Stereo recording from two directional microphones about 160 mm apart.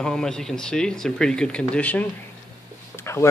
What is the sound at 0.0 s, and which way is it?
Speech, 5° left (ahead or behind).